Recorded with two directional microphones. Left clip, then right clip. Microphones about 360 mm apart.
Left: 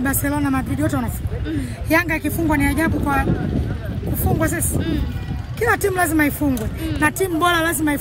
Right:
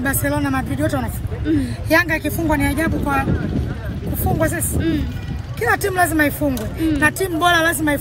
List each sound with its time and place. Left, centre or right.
0.0 s speech: centre
4.4 s speech: centre